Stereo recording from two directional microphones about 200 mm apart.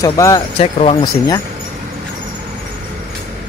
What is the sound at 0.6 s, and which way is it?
Speech, 30° left (ahead or behind).